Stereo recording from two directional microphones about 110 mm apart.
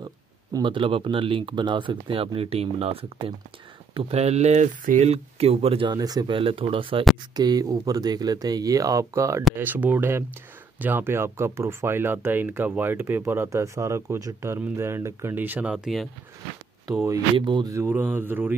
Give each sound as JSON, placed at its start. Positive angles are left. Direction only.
{"t": 0.0, "sound": "speech", "side_deg": -40}
{"t": 3.9, "sound": "speech", "side_deg": -75}
{"t": 5.9, "sound": "speech", "side_deg": -35}
{"t": 6.3, "sound": "speech", "side_deg": -55}
{"t": 7.3, "sound": "speech", "side_deg": -35}
{"t": 9.6, "sound": "speech", "side_deg": -15}
{"t": 15.7, "sound": "speech", "side_deg": 0}
{"t": 17.4, "sound": "speech", "side_deg": -50}
{"t": 17.6, "sound": "speech", "side_deg": -25}